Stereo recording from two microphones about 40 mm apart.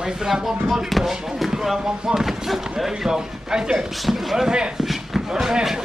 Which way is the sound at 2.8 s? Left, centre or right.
Centre.